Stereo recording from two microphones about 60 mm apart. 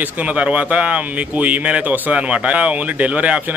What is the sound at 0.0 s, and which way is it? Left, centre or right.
A man's voice, right.